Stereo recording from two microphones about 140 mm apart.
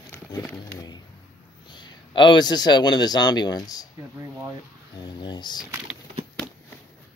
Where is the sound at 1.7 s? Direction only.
35° left (ahead or behind).